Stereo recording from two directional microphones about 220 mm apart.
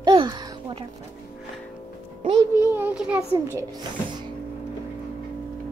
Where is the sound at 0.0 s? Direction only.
20° right (ahead or behind).